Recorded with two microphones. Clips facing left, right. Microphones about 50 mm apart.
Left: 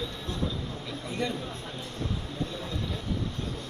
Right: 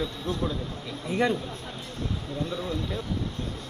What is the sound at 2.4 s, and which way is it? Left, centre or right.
Speech, right.